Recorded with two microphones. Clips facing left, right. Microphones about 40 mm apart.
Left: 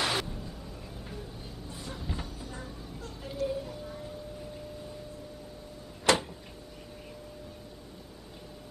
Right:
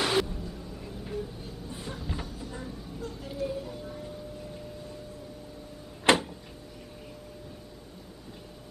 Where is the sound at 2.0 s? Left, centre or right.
Centre.